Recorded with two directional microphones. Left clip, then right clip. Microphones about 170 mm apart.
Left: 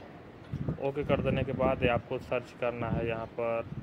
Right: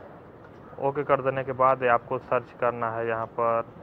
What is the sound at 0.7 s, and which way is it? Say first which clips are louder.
Speech: right 7 dB; 20° left (ahead or behind).